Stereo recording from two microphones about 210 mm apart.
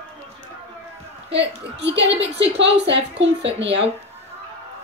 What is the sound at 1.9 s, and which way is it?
Speech, 30° right (ahead or behind).